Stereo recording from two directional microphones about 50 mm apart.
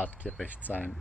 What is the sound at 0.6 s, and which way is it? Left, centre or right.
Speech, left.